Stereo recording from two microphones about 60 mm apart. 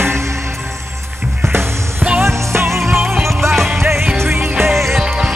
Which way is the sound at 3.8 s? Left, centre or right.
Right.